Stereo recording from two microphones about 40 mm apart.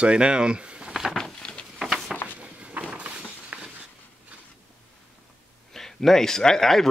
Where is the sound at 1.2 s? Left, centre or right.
Centre.